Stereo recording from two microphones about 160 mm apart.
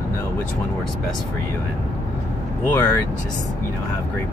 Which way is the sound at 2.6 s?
10° left (ahead or behind).